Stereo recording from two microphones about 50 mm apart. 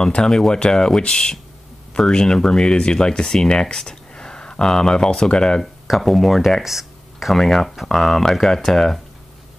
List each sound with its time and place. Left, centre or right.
0.0 s speech: centre
5.6 s speech: centre